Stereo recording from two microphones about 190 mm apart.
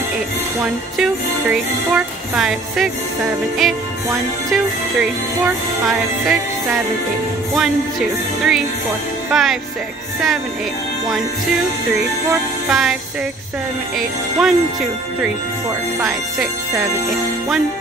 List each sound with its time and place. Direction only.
0.9 s music: 5° right (ahead or behind)
7.5 s music: 5° right (ahead or behind)
12.3 s music: 5° right (ahead or behind)
13.9 s music: 5° right (ahead or behind)